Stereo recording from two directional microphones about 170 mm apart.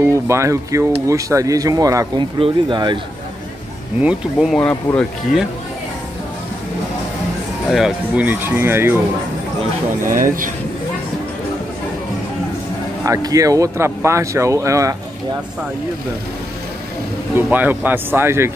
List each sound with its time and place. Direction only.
0.0 s speech: 15° right (ahead or behind)
4.0 s speech: 5° right (ahead or behind)
4.6 s speech: 5° left (ahead or behind)
7.6 s speech: centre (ahead or behind)
10.0 s speech: 50° right (ahead or behind)
13.0 s speech: 20° right (ahead or behind)
17.4 s speech: 10° right (ahead or behind)